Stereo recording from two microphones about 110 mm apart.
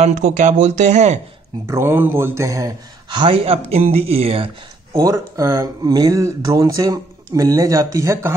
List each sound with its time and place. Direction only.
0.0 s speech: 90° right
1.7 s a man's voice: 20° right (ahead or behind); by 4.5 s 60° right (ahead or behind)
4.9 s speech: 30° right (ahead or behind)